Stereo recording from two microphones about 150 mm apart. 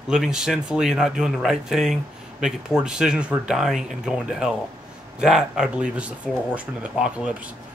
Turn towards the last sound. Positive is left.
turn(degrees=-5)  # may be behind; listen again after turning